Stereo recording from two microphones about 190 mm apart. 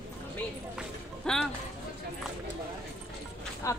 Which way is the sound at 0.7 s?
5° left (ahead or behind).